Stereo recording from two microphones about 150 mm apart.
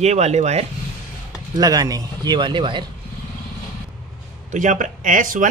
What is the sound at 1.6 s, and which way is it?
Speech, 25° right (ahead or behind).